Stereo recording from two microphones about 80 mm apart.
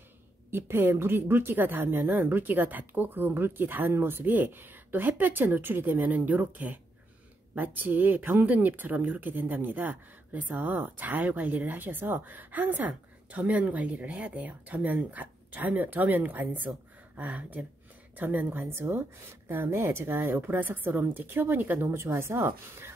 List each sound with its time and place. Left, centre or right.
0.5 s speech: right